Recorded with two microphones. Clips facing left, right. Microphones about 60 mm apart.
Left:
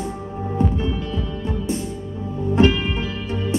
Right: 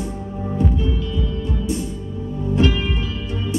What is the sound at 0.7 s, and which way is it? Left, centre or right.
Music, left.